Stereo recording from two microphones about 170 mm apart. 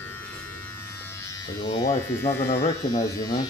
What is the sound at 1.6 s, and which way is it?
Speech, 20° left (ahead or behind).